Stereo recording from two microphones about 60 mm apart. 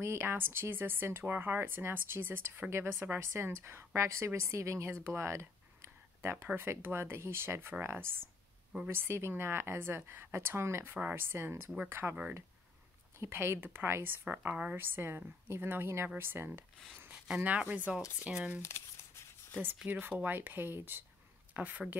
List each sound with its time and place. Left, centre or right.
0.0 s a woman's voice: right
13.2 s a woman's voice: right
14.5 s speech: centre
14.8 s a woman's voice: right
17.4 s speech: right
18.6 s crumpling: left
19.9 s a woman's voice: right